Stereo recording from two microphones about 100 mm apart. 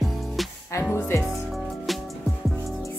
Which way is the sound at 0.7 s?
25° left (ahead or behind).